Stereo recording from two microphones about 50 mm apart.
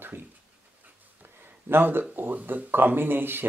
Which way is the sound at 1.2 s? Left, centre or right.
Right.